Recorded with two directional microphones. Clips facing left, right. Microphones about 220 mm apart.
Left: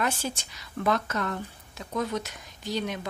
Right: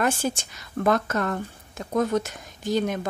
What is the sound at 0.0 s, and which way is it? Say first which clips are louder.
Speech: right 5 dB; 50° right (ahead or behind).